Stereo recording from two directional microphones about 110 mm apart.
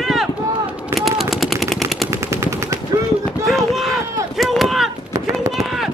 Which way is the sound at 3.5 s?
Centre (ahead or behind).